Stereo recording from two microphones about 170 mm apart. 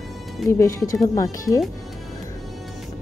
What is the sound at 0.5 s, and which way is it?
Speech, 15° left (ahead or behind).